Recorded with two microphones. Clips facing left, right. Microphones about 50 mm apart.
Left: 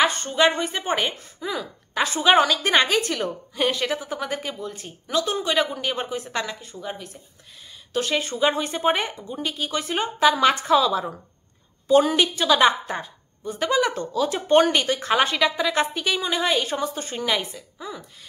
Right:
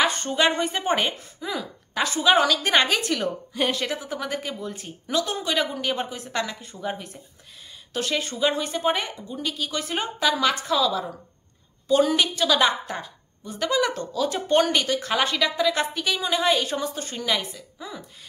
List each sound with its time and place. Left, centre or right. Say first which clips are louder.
0.0 s a woman's voice: left 2 dB; centre
2.0 s a woman's voice: left 1 dB; centre
6.8 s a woman's voice: right 4 dB; centre
7.9 s a woman's voice: left 3 dB; centre